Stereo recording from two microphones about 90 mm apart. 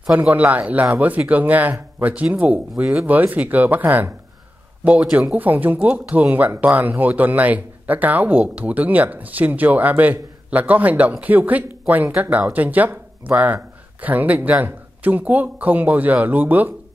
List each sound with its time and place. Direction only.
0.0 s speech: 15° right (ahead or behind)